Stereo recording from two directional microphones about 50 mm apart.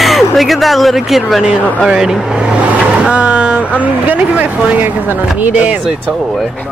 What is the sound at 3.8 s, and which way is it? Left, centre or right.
Speech, right.